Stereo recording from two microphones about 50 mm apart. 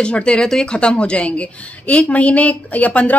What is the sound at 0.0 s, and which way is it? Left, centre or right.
A woman's voice, centre.